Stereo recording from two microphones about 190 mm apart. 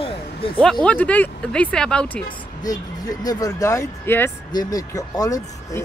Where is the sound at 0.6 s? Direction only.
5° left (ahead or behind).